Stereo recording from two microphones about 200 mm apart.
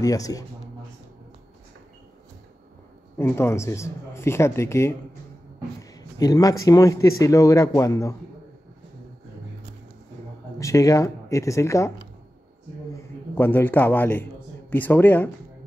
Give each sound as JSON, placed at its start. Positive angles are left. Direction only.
{"t": 0.0, "sound": "a man's voice", "side_deg": 15}
{"t": 3.2, "sound": "a man's voice", "side_deg": 10}
{"t": 5.8, "sound": "a sound", "side_deg": 20}
{"t": 6.6, "sound": "a man's voice", "side_deg": 15}
{"t": 10.6, "sound": "a man's voice", "side_deg": 15}
{"t": 13.3, "sound": "a man's voice", "side_deg": 10}